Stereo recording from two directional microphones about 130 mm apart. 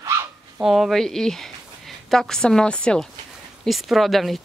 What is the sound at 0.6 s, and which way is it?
Speech, centre (ahead or behind).